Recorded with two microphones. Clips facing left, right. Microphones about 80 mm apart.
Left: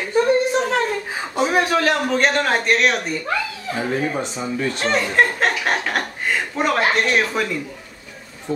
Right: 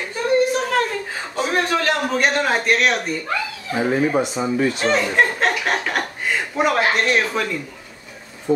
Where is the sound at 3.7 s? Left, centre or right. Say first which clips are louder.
Right 4 dB; centre.